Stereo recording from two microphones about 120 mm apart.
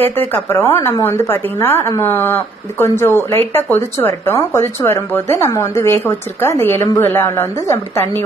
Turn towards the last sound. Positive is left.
turn(degrees=25)  # may be behind; listen again after turning